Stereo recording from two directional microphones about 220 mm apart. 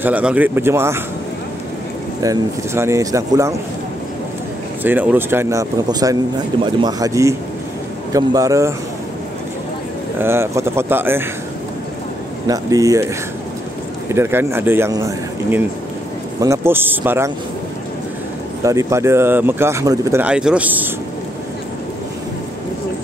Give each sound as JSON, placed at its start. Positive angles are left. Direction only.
{"t": 0.0, "sound": "speech", "side_deg": -5}
{"t": 2.2, "sound": "speech", "side_deg": -10}
{"t": 4.8, "sound": "speech", "side_deg": -10}
{"t": 10.1, "sound": "speech", "side_deg": -10}
{"t": 12.4, "sound": "speech", "side_deg": -15}
{"t": 14.1, "sound": "speech", "side_deg": -10}
{"t": 18.6, "sound": "speech", "side_deg": -15}